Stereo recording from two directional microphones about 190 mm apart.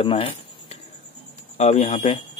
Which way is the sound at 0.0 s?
30° left (ahead or behind).